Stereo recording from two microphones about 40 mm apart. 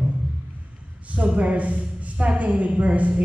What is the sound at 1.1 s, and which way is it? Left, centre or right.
A woman's voice, right.